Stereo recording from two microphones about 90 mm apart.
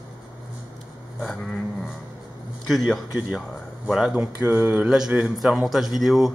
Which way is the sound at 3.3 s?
5° right (ahead or behind).